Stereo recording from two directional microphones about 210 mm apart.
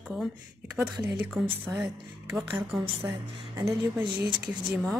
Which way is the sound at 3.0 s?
20° right (ahead or behind).